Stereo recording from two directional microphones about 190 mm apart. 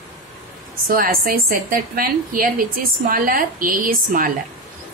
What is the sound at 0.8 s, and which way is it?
A woman's voice, 50° right (ahead or behind).